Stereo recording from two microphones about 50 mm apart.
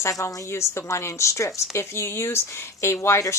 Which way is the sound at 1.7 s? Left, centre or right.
Left.